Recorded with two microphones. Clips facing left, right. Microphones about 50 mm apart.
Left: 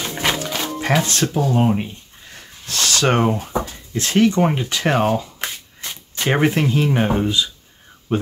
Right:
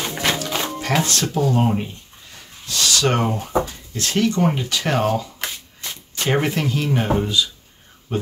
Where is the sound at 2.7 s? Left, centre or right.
Left.